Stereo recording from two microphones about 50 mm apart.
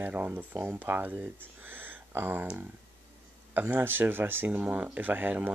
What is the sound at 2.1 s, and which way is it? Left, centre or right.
Speech, right.